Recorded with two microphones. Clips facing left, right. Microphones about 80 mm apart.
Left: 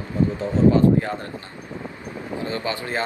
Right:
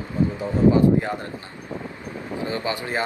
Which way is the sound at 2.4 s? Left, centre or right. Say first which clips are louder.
Even; right.